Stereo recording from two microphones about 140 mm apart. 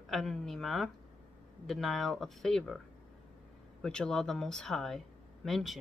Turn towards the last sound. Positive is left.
turn(degrees=0)  # may be behind; listen again after turning